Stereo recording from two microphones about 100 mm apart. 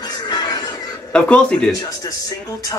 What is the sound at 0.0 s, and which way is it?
Music, 45° left (ahead or behind).